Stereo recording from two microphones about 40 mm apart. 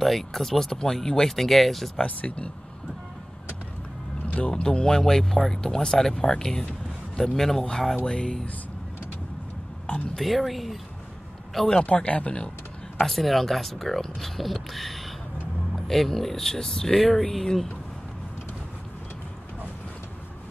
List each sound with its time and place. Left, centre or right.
0.0 s speech: centre
2.0 s speech: left
4.4 s speech: left
10.1 s speech: centre
11.5 s speech: centre
11.8 s speech: left
13.1 s speech: centre